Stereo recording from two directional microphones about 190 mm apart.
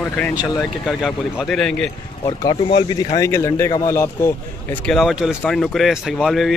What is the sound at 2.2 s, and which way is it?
A man's voice, 25° left (ahead or behind).